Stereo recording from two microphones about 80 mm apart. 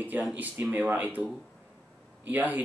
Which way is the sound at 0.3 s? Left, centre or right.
Right.